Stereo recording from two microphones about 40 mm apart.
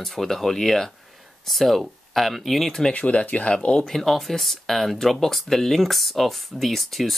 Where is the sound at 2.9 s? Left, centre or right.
Left.